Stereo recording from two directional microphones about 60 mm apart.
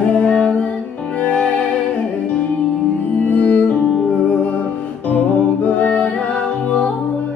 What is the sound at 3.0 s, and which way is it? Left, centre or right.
Music, left.